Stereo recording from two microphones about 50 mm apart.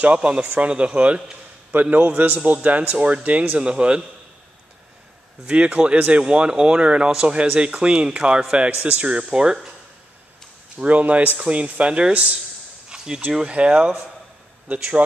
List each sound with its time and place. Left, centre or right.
0.0 s a man's voice: right
5.5 s speech: right
10.8 s speech: right
12.9 s a sound: centre
13.5 s speech: centre